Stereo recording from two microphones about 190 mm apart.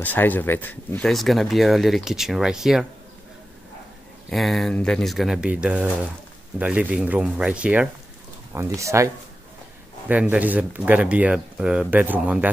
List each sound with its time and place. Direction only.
0.0 s speech: 10° left (ahead or behind)
4.3 s speech: centre (ahead or behind)